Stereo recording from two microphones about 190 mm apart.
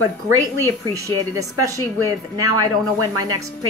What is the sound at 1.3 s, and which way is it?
A woman's voice, 15° right (ahead or behind).